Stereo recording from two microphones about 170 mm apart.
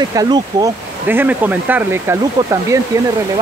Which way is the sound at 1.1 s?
10° right (ahead or behind).